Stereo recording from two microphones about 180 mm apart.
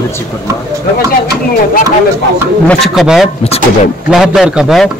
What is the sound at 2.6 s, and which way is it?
A man's voice, centre (ahead or behind).